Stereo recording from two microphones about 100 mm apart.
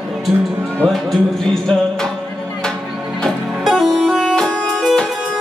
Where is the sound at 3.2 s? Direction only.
Centre (ahead or behind).